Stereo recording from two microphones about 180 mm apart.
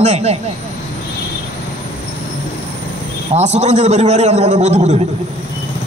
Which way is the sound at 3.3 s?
40° right (ahead or behind).